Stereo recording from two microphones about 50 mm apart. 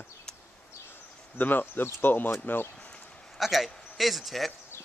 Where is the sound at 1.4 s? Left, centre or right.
Left.